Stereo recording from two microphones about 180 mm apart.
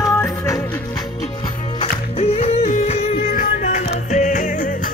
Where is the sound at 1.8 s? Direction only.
35° left (ahead or behind).